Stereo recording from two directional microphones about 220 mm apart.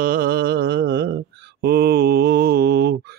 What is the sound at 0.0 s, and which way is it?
Mantra, 40° right (ahead or behind).